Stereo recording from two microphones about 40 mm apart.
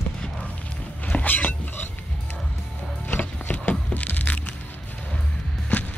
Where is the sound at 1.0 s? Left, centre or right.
Left.